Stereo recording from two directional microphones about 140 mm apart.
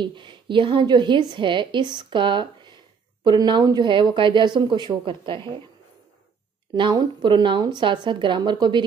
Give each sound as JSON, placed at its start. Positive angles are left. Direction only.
{"t": 0.0, "sound": "speech", "side_deg": -35}
{"t": 6.7, "sound": "speech", "side_deg": -30}